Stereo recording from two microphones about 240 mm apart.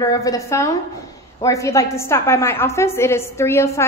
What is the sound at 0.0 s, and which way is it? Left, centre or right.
A woman's voice, centre.